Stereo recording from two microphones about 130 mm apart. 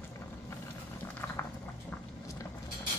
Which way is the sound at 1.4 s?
20° left (ahead or behind).